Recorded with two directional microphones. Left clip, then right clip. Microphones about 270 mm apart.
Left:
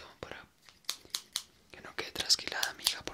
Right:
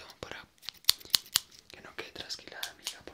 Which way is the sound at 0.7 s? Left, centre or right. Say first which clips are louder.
Right 12 dB; right.